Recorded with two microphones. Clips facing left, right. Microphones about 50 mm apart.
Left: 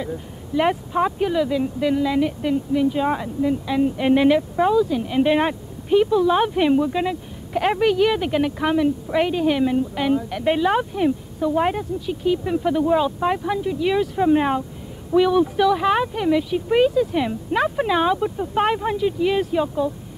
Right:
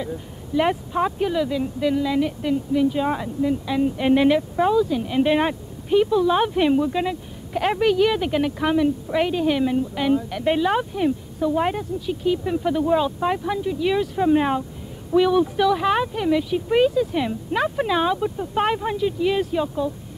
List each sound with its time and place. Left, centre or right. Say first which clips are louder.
0.0 s speech: left 1 dB; centre